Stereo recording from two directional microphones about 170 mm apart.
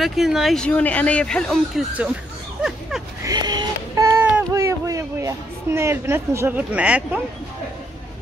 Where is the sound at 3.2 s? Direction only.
25° right (ahead or behind).